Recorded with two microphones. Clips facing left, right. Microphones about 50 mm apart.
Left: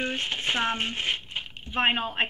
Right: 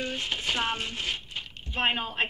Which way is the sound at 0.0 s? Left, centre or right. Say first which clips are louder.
Left 2 dB; left.